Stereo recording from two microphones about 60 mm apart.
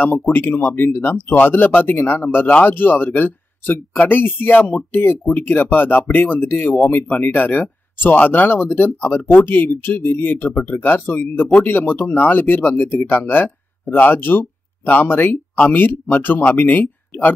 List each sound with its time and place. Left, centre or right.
0.3 s speech: left